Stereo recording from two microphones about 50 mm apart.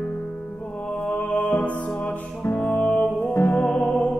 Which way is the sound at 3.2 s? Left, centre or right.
Left.